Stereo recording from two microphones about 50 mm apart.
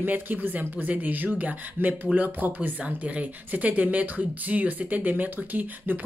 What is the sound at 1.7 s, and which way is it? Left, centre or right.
Speech, right.